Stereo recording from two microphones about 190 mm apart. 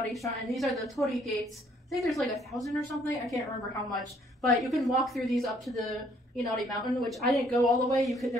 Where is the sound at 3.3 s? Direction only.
20° left (ahead or behind).